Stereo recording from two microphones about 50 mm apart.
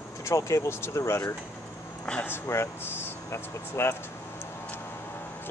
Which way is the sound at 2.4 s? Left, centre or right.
Left.